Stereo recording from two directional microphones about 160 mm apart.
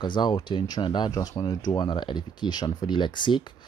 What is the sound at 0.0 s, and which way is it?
Speech, 30° left (ahead or behind).